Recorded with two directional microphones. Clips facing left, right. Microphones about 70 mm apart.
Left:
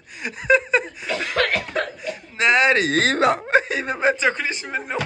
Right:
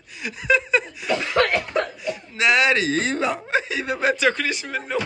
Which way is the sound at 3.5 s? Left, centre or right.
Left.